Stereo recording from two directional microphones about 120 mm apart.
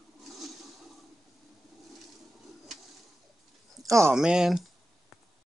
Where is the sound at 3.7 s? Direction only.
25° right (ahead or behind).